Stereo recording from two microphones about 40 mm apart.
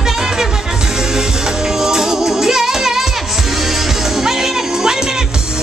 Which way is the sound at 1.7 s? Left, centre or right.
Centre.